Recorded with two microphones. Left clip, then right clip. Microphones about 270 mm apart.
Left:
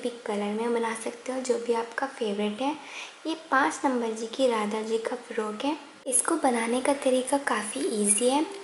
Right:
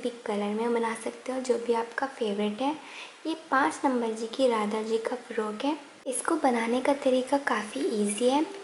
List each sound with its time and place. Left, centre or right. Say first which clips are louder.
0.0 s speech: even; centre